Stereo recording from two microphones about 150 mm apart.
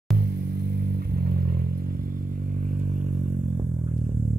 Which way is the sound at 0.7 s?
90° right.